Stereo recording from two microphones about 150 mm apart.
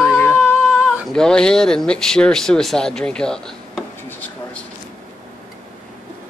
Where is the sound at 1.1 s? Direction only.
5° left (ahead or behind).